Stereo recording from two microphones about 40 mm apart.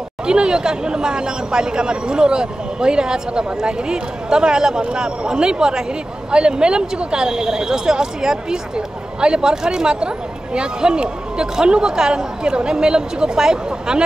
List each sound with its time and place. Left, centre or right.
0.3 s speech: centre